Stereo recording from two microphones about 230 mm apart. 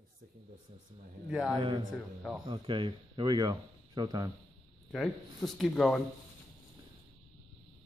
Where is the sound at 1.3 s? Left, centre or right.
Centre.